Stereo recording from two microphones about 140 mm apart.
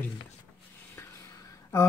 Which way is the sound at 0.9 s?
25° left (ahead or behind).